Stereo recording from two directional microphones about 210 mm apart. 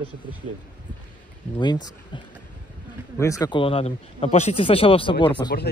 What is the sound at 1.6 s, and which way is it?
Speech, 20° left (ahead or behind).